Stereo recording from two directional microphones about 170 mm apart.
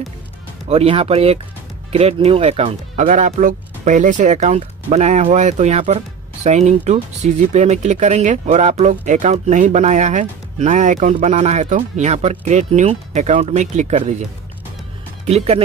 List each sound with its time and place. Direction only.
0.7 s speech: 35° right (ahead or behind)
3.0 s speech: 45° right (ahead or behind)
15.2 s speech: 40° right (ahead or behind)